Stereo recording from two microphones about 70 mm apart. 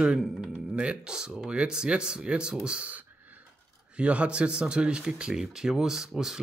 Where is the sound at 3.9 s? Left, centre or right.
Centre.